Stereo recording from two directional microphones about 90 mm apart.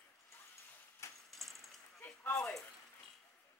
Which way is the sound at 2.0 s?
15° left (ahead or behind).